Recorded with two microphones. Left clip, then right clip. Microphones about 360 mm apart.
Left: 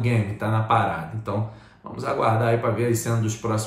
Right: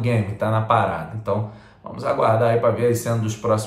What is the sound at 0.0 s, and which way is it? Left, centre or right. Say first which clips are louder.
A man's voice: right 4 dB; centre.